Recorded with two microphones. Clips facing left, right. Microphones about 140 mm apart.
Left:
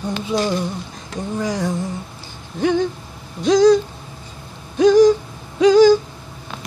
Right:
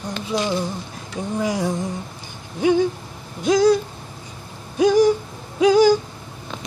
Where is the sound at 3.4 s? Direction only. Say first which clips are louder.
Left 3 dB; 10° right (ahead or behind).